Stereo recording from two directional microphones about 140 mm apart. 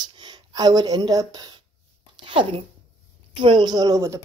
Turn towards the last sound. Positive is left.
turn(degrees=-20)  # may be behind; listen again after turning